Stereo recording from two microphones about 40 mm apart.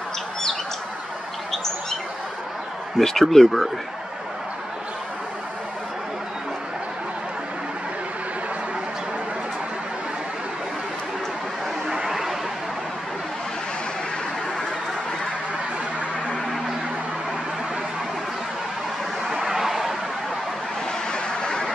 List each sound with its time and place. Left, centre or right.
1.5 s bird: centre
3.0 s speech: centre
11.9 s a sound: centre
19.4 s vehicle: centre
21.1 s vehicle: left